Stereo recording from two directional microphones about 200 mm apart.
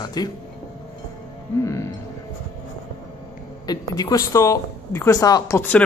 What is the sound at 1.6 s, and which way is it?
Music, 15° left (ahead or behind).